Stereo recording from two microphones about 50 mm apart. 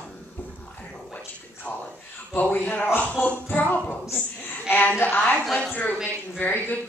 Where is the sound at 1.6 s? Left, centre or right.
Left.